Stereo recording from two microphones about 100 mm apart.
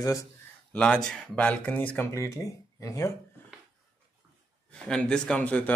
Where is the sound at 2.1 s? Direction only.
30° left (ahead or behind).